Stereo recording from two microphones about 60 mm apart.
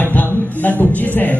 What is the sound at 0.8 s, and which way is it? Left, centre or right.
Speech, left.